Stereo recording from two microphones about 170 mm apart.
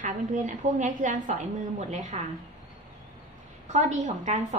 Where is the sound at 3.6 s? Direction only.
45° right (ahead or behind).